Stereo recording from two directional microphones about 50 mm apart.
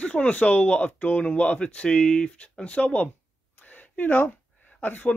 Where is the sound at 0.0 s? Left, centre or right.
Left.